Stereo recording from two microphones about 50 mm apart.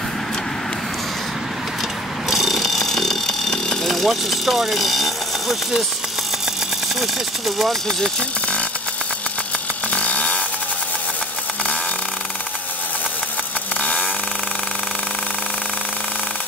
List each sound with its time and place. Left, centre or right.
2.2 s jackhammer: centre
3.8 s speech: centre
7.0 s speech: centre
9.9 s chainsaw: left